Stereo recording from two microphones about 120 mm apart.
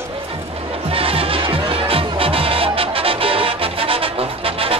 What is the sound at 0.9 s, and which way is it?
Music, 50° right (ahead or behind).